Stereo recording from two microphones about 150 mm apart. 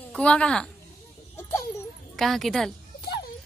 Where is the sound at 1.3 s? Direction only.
15° left (ahead or behind).